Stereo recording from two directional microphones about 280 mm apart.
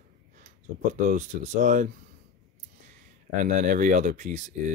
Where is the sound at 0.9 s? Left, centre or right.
Right.